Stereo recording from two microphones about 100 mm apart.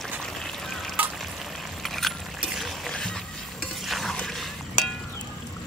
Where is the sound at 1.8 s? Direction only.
Centre (ahead or behind).